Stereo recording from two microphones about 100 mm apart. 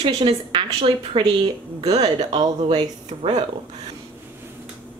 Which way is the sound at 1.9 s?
90° right.